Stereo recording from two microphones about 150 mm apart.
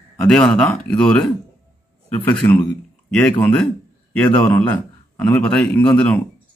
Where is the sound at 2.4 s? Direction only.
15° left (ahead or behind).